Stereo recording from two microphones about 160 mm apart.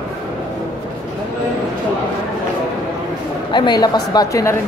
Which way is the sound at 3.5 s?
25° left (ahead or behind).